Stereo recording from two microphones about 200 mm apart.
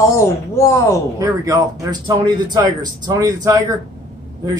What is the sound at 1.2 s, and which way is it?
A man's voice, 15° right (ahead or behind).